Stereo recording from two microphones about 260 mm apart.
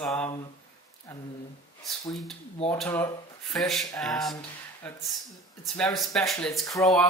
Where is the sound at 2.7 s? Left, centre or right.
Centre.